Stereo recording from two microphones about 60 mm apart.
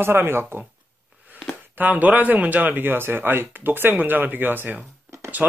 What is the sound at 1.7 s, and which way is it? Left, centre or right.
Speech, right.